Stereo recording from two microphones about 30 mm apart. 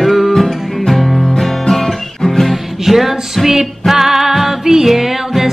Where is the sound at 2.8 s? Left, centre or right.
Centre.